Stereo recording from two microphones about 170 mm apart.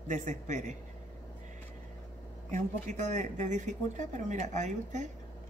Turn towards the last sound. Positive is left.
turn(degrees=-45)  # may be behind; listen again after turning